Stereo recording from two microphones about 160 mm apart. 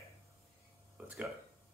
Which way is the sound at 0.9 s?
10° right (ahead or behind).